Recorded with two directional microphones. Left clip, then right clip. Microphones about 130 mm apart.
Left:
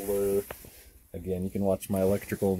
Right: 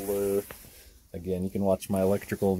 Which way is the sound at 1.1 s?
30° right (ahead or behind).